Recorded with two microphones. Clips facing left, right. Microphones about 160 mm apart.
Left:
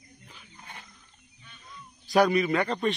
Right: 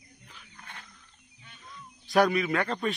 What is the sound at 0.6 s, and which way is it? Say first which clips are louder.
Wild animals: left 1 dB; 20° left (ahead or behind).